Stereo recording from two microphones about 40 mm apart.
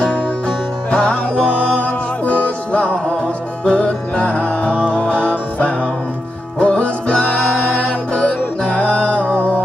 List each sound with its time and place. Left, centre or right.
0.8 s music: left
9.2 s music: right